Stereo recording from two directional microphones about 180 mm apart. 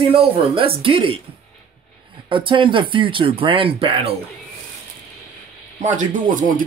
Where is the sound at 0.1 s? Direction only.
30° right (ahead or behind).